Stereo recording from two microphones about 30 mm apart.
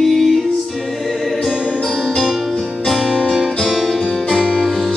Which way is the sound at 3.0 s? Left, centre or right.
Right.